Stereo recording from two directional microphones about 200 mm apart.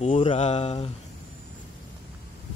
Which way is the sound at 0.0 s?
35° left (ahead or behind).